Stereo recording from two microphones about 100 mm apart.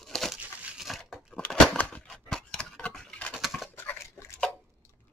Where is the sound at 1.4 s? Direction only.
15° left (ahead or behind).